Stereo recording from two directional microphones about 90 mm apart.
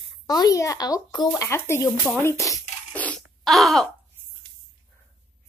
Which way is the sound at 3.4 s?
Centre (ahead or behind).